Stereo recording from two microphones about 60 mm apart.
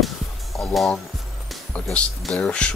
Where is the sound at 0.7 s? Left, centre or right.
Centre.